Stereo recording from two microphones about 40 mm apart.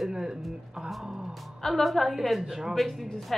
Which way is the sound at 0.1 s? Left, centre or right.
Centre.